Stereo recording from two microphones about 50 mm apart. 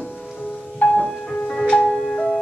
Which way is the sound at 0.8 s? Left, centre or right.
Centre.